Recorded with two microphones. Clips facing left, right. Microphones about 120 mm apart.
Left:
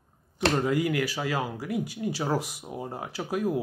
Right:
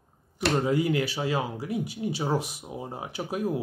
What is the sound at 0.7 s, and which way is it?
Speech, 25° right (ahead or behind).